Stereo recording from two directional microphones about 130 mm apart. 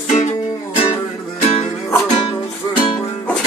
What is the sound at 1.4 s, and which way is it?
Music, 60° left (ahead or behind).